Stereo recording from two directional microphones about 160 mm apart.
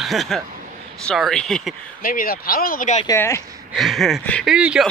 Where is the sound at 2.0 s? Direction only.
65° left (ahead or behind).